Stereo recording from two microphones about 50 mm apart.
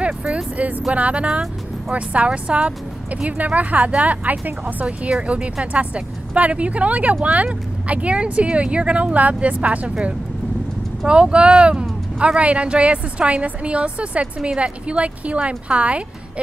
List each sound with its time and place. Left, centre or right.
0.0 s speech: right
5.2 s speech: right